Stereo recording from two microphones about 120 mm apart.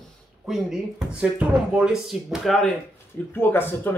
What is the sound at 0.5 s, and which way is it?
Speech, 5° right (ahead or behind).